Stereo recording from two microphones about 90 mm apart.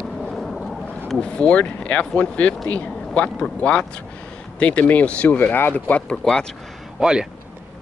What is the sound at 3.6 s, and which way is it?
Speech, 10° left (ahead or behind).